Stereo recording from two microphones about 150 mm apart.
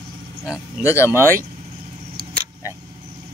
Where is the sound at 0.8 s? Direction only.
20° left (ahead or behind).